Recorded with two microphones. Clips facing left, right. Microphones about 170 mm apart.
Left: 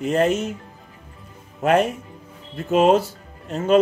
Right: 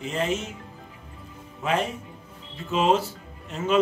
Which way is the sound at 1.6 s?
60° left (ahead or behind).